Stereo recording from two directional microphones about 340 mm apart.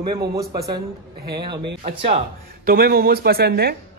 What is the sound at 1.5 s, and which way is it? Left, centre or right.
Speech, right.